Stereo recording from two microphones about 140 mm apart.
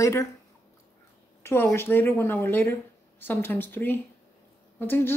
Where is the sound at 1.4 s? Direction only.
15° left (ahead or behind).